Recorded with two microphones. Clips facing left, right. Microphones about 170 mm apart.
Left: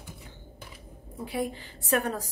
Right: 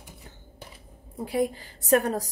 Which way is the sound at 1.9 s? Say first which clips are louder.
Right 5 dB; 40° right (ahead or behind).